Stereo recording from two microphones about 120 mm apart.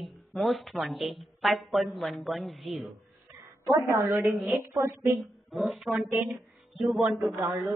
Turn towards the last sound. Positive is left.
turn(degrees=-15)  # may be behind; listen again after turning